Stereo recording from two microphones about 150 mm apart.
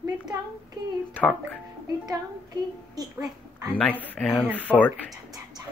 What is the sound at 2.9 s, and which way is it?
Speech, 25° right (ahead or behind).